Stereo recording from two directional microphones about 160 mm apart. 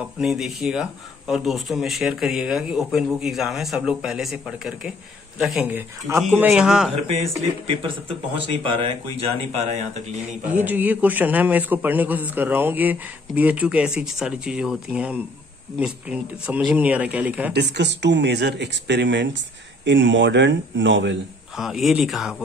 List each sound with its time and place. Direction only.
0.2 s a man's voice: 5° right (ahead or behind)
7.1 s speech: 40° right (ahead or behind)
9.6 s speech: 45° right (ahead or behind)
10.5 s a man's voice: 10° right (ahead or behind)
17.5 s speech: 90° right
21.5 s speech: centre (ahead or behind)